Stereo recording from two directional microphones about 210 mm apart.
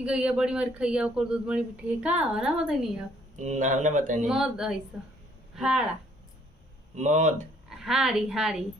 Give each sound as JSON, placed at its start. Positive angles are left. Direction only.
{"t": 0.0, "sound": "speech", "side_deg": -5}
{"t": 3.3, "sound": "speech", "side_deg": -35}
{"t": 4.3, "sound": "speech", "side_deg": 0}
{"t": 7.0, "sound": "speech", "side_deg": -35}
{"t": 7.7, "sound": "a woman's voice", "side_deg": 0}